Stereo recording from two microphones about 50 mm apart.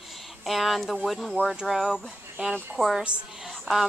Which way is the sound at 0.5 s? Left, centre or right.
Centre.